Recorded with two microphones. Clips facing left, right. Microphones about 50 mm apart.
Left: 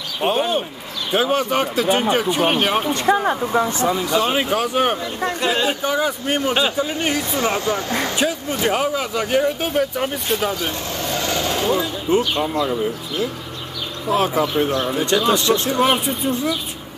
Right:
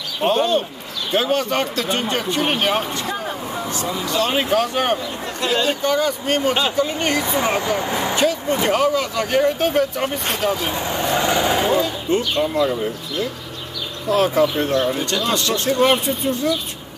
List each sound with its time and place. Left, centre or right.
0.2 s speech: centre
3.1 s speech: left
3.9 s speech: centre
7.2 s speech: centre
8.2 s speech: centre
10.5 s vehicle: centre
12.4 s speech: centre
14.0 s a man's voice: centre